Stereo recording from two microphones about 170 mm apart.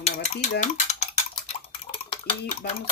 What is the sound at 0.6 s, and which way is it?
Dishes, 40° left (ahead or behind).